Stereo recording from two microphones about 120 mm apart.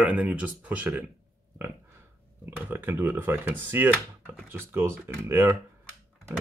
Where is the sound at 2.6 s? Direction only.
15° right (ahead or behind).